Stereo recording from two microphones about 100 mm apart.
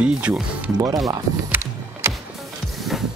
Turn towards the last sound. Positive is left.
turn(degrees=0)  # may be behind; listen again after turning